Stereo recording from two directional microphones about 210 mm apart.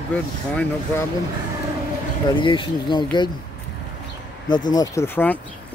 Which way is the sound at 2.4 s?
20° left (ahead or behind).